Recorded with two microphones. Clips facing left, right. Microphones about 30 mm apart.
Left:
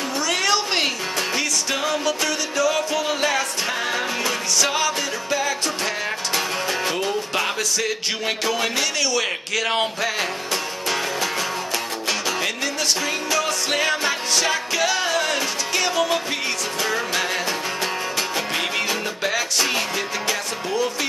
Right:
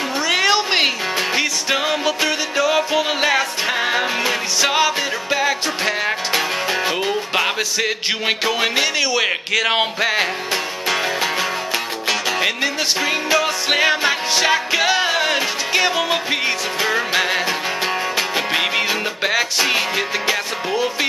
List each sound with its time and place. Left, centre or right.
0.3 s music: right
12.3 s music: right